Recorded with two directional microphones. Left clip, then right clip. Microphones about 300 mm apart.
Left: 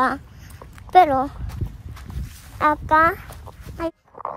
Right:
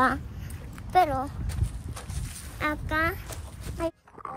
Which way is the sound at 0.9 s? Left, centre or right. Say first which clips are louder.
Left 9 dB; left.